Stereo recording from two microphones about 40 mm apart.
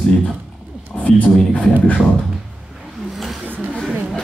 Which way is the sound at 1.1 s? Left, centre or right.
Left.